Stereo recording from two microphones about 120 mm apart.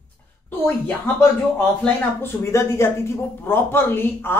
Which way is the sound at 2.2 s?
20° left (ahead or behind).